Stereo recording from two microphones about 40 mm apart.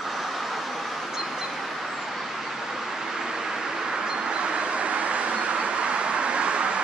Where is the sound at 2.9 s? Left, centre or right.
Centre.